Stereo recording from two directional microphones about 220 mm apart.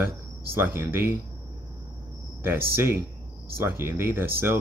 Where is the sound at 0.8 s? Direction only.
10° right (ahead or behind).